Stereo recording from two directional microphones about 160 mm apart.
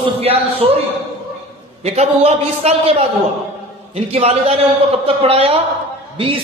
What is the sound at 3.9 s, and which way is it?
A man's voice, 40° right (ahead or behind).